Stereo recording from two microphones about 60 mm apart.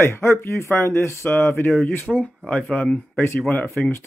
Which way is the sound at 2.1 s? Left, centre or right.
Centre.